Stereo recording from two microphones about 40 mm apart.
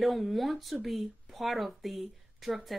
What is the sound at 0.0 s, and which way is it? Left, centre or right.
A woman's voice, centre.